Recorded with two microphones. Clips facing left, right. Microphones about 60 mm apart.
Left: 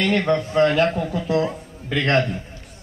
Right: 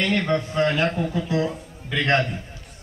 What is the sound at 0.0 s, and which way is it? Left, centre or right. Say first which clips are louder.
A man's voice: left 3 dB; left.